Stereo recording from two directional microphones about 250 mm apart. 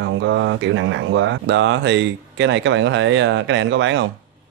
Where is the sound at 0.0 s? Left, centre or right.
Right.